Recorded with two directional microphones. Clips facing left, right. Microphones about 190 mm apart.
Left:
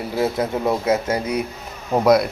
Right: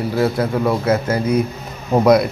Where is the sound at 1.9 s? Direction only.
Centre (ahead or behind).